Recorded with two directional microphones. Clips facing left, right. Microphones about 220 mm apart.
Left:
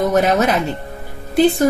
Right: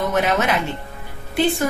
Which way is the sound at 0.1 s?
40° left (ahead or behind).